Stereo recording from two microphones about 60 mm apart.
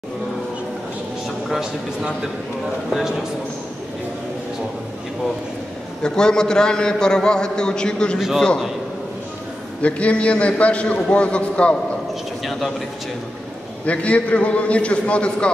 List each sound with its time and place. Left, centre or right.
1.5 s a man's voice: centre
6.0 s a man's voice: centre
9.8 s a man's voice: left
12.4 s a sound: centre
13.8 s a man's voice: left